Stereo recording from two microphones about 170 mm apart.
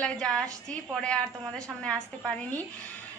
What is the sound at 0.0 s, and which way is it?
A woman's voice, 5° left (ahead or behind).